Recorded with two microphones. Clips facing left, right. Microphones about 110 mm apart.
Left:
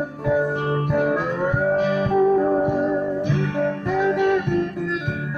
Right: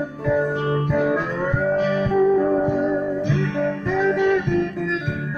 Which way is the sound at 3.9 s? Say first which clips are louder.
Right 1 dB; 15° left (ahead or behind).